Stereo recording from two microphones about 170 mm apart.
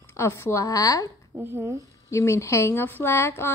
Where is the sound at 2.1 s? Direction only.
15° left (ahead or behind).